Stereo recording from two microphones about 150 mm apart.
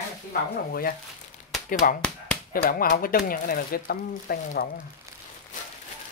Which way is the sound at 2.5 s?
75° left (ahead or behind).